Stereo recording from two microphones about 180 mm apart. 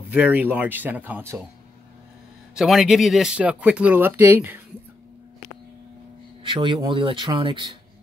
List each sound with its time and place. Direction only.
0.1 s speech: 10° right (ahead or behind)
2.5 s speech: centre (ahead or behind)
6.4 s speech: 25° right (ahead or behind)